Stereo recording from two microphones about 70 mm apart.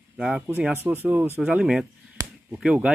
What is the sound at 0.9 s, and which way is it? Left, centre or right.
Speech, right.